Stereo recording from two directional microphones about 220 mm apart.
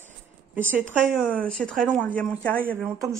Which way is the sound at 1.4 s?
5° left (ahead or behind).